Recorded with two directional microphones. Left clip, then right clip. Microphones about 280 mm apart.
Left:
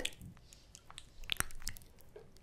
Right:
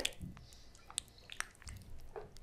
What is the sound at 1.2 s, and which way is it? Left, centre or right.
Chewing, left.